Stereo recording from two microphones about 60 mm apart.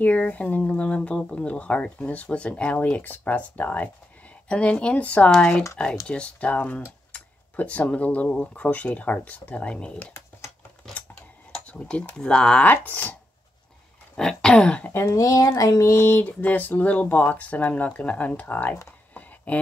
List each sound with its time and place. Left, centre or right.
0.0 s speech: left
5.3 s throat clearing: centre
6.0 s speech: centre
10.8 s a sound: centre
11.5 s speech: centre
12.6 s speech: left
14.1 s throat clearing: centre
14.9 s a woman's voice: left
15.1 s speech: left
15.9 s speech: left
19.1 s a sound: left